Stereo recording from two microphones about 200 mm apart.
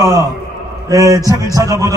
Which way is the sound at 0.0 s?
15° right (ahead or behind).